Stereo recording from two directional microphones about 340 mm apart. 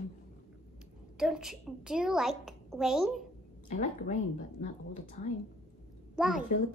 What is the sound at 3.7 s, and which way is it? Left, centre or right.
Speech, left.